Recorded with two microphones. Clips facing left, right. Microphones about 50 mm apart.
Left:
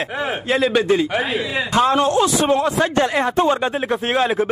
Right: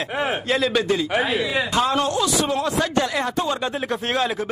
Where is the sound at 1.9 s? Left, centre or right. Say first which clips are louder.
Left 5 dB; left.